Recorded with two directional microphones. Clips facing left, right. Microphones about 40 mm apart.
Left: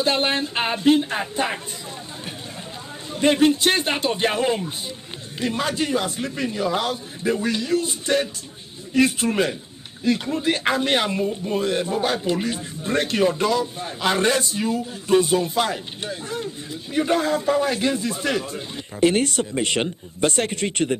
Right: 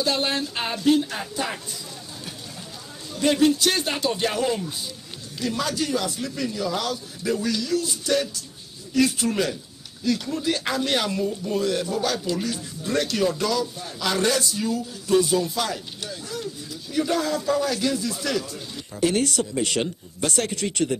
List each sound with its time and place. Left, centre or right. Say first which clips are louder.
0.0 s speech: left 3 dB; left
3.2 s speech: left 2 dB; left